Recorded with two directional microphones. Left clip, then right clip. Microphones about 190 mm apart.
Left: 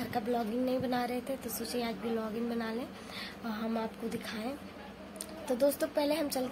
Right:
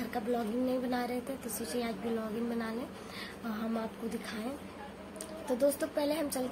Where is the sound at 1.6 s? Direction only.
Centre (ahead or behind).